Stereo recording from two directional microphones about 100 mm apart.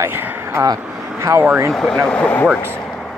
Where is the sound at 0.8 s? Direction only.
5° right (ahead or behind).